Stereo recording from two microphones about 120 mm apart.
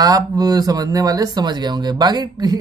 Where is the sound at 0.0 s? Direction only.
30° right (ahead or behind).